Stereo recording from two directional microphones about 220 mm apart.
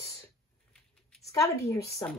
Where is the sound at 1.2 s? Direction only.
15° left (ahead or behind).